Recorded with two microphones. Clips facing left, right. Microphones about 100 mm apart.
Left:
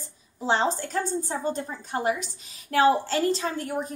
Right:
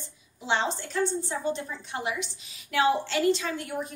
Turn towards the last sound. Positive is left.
turn(degrees=40)  # may be behind; listen again after turning